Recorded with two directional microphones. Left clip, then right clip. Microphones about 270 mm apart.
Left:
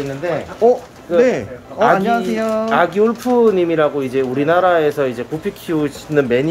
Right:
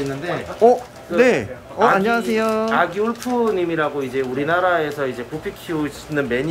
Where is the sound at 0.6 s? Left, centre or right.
Centre.